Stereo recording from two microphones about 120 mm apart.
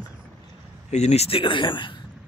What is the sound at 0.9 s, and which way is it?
A man's voice, 65° left (ahead or behind).